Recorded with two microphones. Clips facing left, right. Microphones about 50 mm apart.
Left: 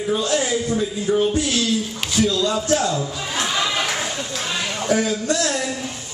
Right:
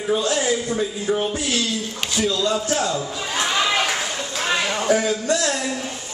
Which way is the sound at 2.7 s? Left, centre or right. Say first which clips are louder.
Left 2 dB; centre.